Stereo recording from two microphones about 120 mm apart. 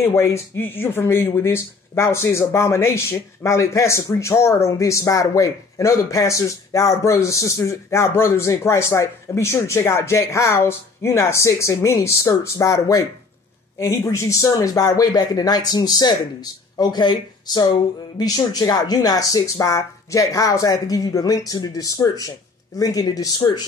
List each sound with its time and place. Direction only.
0.0 s speech: 25° left (ahead or behind)